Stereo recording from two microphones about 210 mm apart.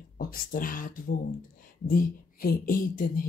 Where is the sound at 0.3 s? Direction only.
40° left (ahead or behind).